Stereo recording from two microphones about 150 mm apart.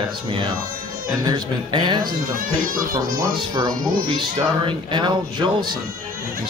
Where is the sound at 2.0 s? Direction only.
70° right (ahead or behind).